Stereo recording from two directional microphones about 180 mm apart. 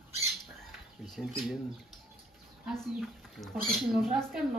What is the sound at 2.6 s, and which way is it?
Speech, 5° left (ahead or behind).